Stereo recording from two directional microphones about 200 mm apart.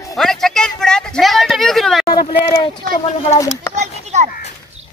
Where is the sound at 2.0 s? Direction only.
20° left (ahead or behind).